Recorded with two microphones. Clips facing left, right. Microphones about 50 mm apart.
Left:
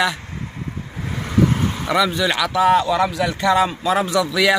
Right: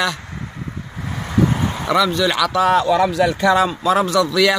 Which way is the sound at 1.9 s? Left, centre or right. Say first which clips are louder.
Right 2 dB; centre.